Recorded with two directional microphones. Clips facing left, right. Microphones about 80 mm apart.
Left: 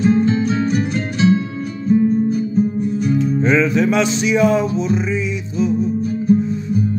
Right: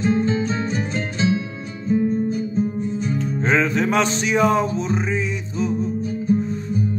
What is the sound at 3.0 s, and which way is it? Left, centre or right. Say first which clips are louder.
Music: left 6 dB; right.